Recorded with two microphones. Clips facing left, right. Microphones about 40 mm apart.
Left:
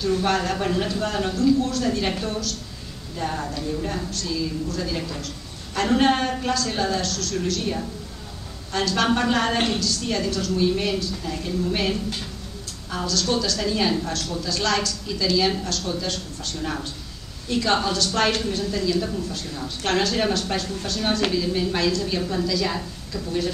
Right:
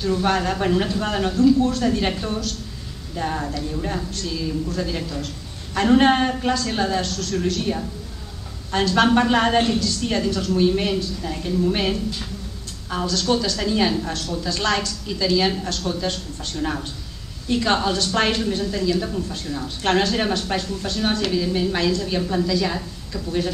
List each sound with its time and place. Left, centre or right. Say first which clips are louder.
0.0 s a woman's voice: right 1 dB; centre
12.9 s a woman's voice: right 3 dB; centre